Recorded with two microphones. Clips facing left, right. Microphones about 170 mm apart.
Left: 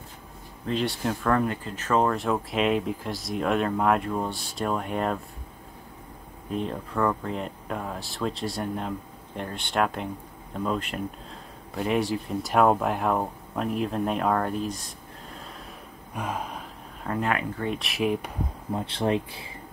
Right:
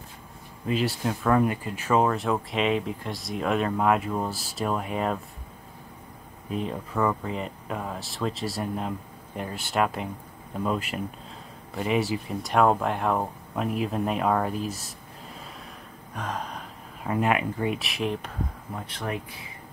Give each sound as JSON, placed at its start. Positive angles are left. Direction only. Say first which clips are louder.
{"t": 0.7, "sound": "speech", "louder": "right 1 dB", "side_deg": -5}
{"t": 6.5, "sound": "speech", "louder": "even", "side_deg": -5}
{"t": 16.2, "sound": "gasp", "louder": "left 1 dB", "side_deg": 10}
{"t": 17.0, "sound": "speech", "louder": "right 3 dB", "side_deg": -10}
{"t": 18.7, "sound": "speech", "louder": "left 9 dB", "side_deg": 25}